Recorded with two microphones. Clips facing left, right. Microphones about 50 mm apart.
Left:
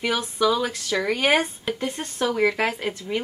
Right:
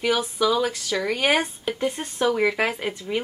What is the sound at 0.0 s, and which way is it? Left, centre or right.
A woman's voice, centre.